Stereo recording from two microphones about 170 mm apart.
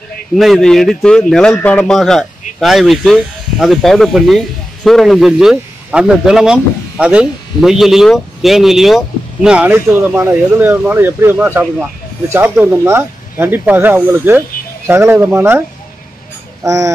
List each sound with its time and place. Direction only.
0.4 s a man's voice: centre (ahead or behind)
16.6 s speech: 20° right (ahead or behind)